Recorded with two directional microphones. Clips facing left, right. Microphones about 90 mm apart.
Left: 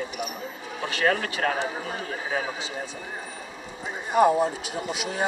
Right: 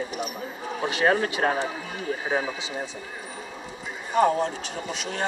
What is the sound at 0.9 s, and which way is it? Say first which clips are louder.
Speech: right 2 dB; 25° right (ahead or behind).